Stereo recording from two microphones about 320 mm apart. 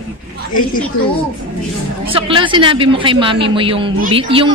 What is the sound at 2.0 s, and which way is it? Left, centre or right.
A man's voice, centre.